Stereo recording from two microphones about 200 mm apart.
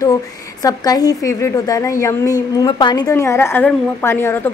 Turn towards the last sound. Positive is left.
turn(degrees=10)  # may be behind; listen again after turning